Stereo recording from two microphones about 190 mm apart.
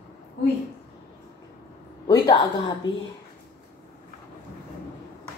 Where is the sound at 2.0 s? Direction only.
25° left (ahead or behind).